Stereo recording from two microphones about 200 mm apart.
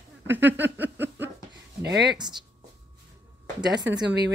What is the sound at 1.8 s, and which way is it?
Speech, 55° right (ahead or behind).